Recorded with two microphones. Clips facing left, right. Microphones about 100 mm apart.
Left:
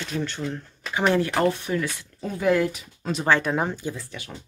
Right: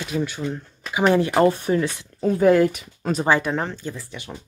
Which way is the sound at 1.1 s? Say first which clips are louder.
Right 5 dB; 20° right (ahead or behind).